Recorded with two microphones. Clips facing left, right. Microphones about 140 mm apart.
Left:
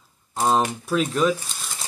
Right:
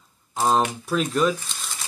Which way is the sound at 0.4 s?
Centre (ahead or behind).